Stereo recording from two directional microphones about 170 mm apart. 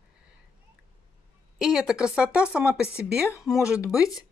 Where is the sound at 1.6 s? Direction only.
5° right (ahead or behind).